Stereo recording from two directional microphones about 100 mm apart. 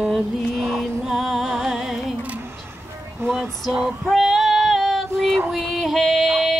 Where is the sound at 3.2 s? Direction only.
10° right (ahead or behind).